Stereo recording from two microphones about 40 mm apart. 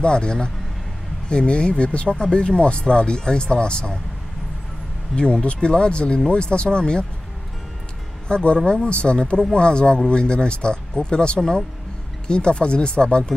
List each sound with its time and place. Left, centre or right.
0.0 s speech: left
5.1 s speech: left
8.3 s speech: left